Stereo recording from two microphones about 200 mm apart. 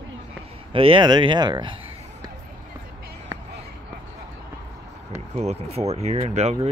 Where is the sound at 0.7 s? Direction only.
25° right (ahead or behind).